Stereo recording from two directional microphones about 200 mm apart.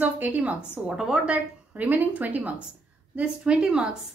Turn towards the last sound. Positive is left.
turn(degrees=-5)  # may be behind; listen again after turning